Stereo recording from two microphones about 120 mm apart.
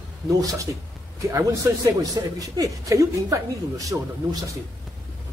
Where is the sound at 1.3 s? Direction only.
25° right (ahead or behind).